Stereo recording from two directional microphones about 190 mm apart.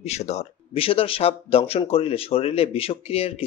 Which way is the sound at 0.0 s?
35° left (ahead or behind).